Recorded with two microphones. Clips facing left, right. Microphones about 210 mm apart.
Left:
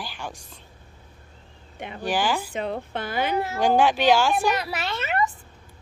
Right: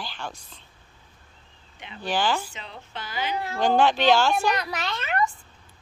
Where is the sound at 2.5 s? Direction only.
55° left (ahead or behind).